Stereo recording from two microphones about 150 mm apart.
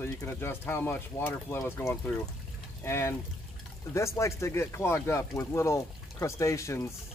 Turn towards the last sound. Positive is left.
turn(degrees=20)  # may be behind; listen again after turning